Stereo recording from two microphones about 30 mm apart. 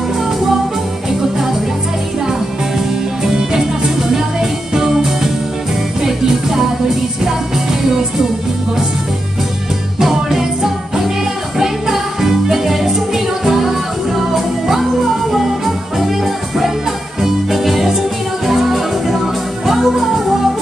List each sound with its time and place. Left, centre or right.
3.3 s music: right
9.9 s music: centre